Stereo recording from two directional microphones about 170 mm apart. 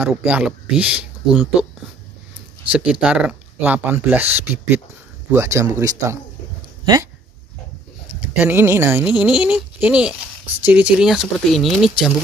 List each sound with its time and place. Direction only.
0.0 s speech: 5° right (ahead or behind)
2.7 s speech: 5° right (ahead or behind)
8.2 s speech: 10° right (ahead or behind)